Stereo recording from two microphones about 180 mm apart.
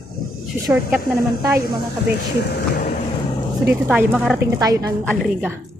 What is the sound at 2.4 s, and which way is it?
Speech, 65° left (ahead or behind).